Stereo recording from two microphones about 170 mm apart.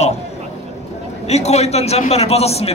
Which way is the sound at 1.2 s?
40° left (ahead or behind).